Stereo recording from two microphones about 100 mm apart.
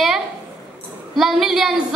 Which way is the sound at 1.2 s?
Centre (ahead or behind).